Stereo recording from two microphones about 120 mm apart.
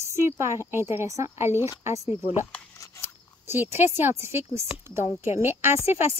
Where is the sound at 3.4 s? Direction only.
20° right (ahead or behind).